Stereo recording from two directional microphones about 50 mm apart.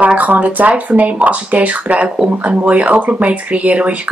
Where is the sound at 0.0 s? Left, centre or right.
Right.